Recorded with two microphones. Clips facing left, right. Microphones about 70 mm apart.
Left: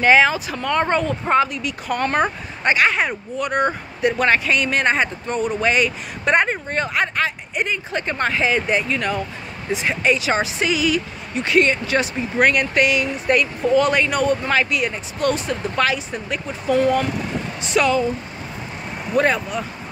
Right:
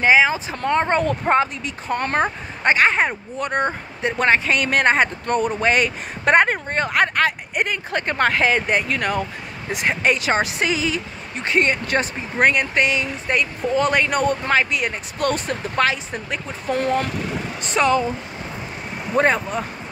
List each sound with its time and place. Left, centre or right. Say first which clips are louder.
0.0 s speech: left 1 dB; centre
0.7 s speech: right 1 dB; right
1.3 s speech: left 3 dB; right
11.7 s speech: left 1 dB; right
12.4 s speech: left 1 dB; right
15.7 s speech: right 1 dB; right
19.1 s speech: even; right